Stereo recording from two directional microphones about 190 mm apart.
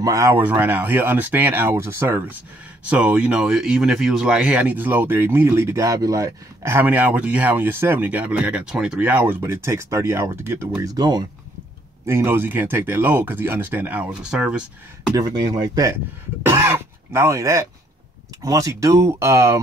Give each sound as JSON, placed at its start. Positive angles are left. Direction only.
{"t": 0.0, "sound": "speech", "side_deg": -15}
{"t": 15.1, "sound": "speech", "side_deg": -20}